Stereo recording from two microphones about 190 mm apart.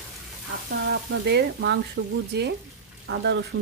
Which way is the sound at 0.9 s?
60° right (ahead or behind).